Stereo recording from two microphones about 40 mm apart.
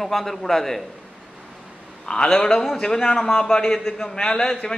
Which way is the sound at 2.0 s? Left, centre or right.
Centre.